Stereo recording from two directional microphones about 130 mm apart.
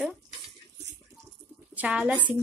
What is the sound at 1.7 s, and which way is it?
Speech, 5° right (ahead or behind).